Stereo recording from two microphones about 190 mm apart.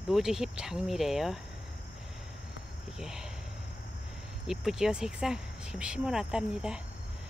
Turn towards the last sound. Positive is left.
turn(degrees=-5)  # may be behind; listen again after turning